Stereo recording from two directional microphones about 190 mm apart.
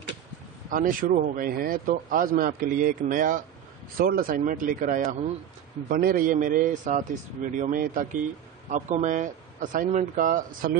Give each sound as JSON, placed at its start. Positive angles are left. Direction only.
{"t": 0.7, "sound": "speech", "side_deg": -45}